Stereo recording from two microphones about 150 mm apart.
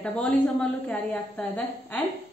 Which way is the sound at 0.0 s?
10° left (ahead or behind).